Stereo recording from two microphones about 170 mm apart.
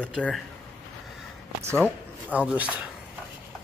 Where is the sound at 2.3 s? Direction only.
10° right (ahead or behind).